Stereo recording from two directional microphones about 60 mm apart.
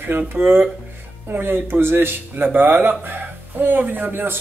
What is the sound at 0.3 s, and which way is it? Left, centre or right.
Speech, right.